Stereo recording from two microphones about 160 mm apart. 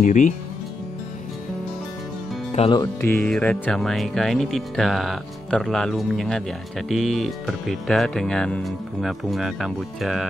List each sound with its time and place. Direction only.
0.0 s speech: 50° left (ahead or behind)
2.5 s speech: 40° left (ahead or behind)
2.8 s speech: 15° left (ahead or behind)